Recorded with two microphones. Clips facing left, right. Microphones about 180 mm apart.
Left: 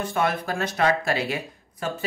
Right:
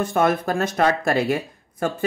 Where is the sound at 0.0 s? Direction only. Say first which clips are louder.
Right 5 dB; 45° right (ahead or behind).